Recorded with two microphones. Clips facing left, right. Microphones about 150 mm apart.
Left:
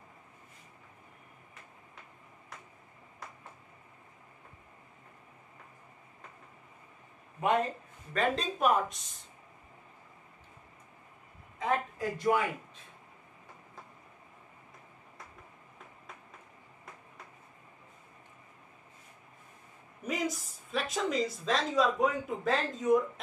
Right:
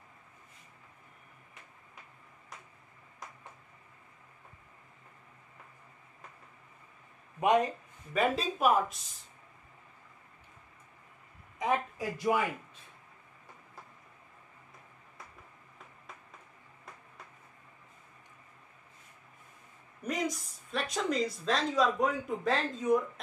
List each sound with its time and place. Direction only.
7.3 s speech: 15° right (ahead or behind)
11.6 s a sound: 15° right (ahead or behind)
12.0 s speech: 5° right (ahead or behind)
20.0 s speech: centre (ahead or behind)